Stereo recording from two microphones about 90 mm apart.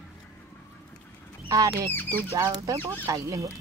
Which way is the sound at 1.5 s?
40° right (ahead or behind).